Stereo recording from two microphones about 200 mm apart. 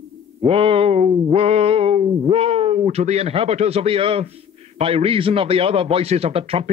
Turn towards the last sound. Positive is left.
turn(degrees=-30)  # may be behind; listen again after turning